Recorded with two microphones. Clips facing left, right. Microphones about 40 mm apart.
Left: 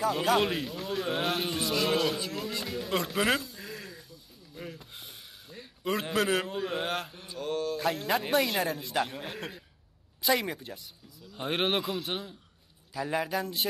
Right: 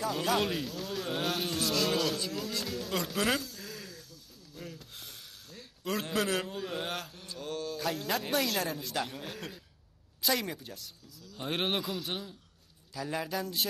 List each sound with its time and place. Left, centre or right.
0.1 s speech: centre
7.1 s mantra: centre
7.3 s speech: centre